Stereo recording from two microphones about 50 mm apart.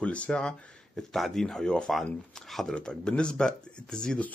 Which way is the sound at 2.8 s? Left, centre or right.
Centre.